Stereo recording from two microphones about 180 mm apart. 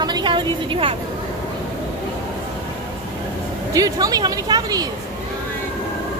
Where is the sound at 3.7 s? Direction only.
20° right (ahead or behind).